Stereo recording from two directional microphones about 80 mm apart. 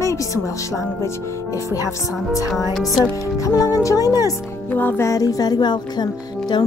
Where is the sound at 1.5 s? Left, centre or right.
Left.